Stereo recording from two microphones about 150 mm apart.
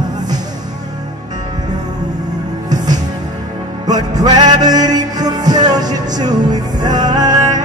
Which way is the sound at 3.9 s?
25° right (ahead or behind).